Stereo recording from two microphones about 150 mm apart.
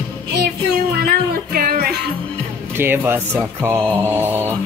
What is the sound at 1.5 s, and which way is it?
Music, 80° right.